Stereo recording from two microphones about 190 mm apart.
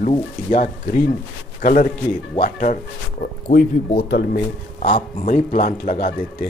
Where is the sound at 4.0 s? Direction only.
55° left (ahead or behind).